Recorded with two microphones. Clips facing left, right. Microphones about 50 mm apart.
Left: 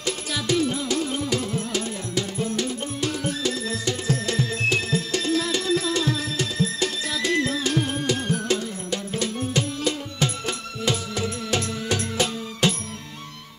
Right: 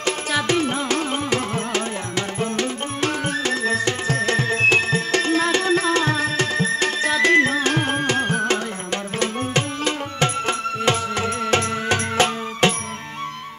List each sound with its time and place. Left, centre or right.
0.0 s music: right